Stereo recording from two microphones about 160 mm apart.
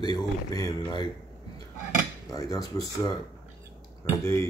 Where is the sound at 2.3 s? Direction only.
20° left (ahead or behind).